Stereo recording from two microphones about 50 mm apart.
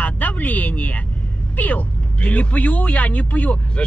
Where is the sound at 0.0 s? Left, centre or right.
Left.